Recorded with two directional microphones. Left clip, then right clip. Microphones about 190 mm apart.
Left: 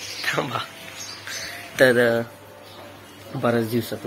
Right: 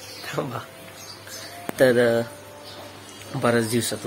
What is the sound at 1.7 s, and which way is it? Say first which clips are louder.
Speech: left 1 dB; 10° right (ahead or behind).